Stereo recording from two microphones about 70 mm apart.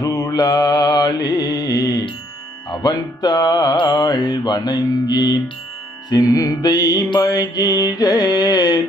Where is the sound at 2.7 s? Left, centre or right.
Left.